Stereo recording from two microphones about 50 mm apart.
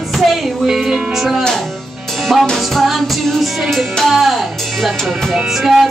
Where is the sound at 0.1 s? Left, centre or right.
Centre.